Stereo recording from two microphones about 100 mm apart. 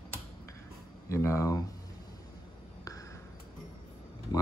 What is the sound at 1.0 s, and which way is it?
Speech, 30° left (ahead or behind).